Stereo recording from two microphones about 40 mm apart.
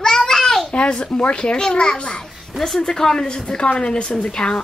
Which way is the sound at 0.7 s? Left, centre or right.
Left.